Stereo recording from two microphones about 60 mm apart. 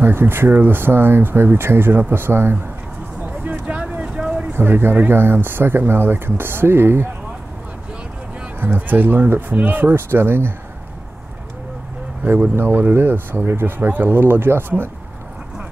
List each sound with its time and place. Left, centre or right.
0.0 s speech: right
3.2 s a sound: right
4.6 s speech: right
8.7 s speech: right
12.5 s speech: right